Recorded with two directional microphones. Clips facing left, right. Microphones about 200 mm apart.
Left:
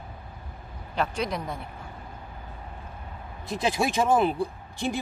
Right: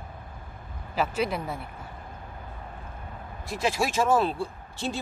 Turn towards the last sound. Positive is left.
turn(degrees=15)  # may be behind; listen again after turning